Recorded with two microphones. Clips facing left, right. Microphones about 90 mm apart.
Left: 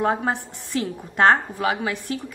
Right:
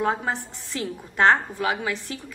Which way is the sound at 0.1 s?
15° left (ahead or behind).